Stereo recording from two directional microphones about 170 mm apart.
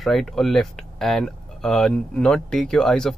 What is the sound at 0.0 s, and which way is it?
Speech, centre (ahead or behind).